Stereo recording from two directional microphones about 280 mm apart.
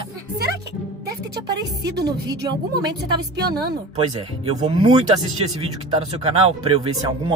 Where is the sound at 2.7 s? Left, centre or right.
Right.